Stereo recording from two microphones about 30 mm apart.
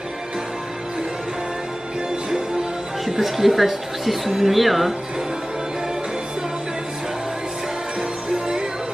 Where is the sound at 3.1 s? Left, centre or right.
Centre.